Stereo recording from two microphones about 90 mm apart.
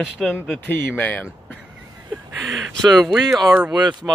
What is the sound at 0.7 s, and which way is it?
Speech, 25° left (ahead or behind).